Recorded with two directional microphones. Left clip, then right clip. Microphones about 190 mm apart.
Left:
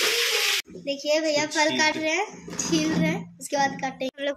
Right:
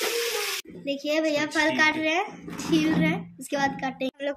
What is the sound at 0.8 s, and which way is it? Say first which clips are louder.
Speech: left 1 dB; 45° right (ahead or behind).